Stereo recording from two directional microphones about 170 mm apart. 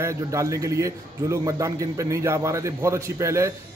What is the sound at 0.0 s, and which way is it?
A man's voice, 15° right (ahead or behind).